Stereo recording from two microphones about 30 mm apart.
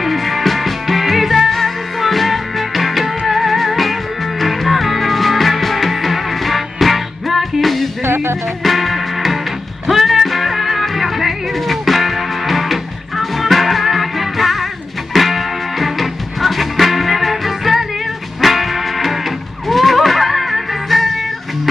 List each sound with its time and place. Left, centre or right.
0.0 s music: centre